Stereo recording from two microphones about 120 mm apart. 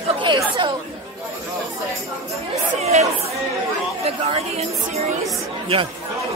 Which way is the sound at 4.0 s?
60° right (ahead or behind).